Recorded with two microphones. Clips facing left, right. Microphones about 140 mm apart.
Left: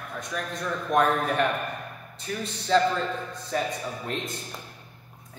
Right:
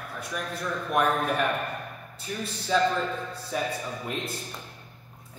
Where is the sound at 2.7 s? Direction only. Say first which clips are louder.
Left 2 dB; 10° right (ahead or behind).